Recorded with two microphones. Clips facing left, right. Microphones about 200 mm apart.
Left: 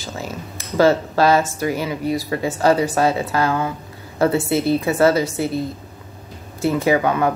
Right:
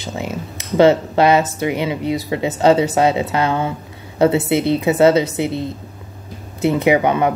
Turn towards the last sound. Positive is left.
turn(degrees=-20)  # may be behind; listen again after turning